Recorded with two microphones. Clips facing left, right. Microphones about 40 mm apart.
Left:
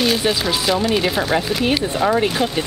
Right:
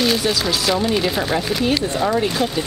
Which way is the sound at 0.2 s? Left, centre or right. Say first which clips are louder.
Left 1 dB; left.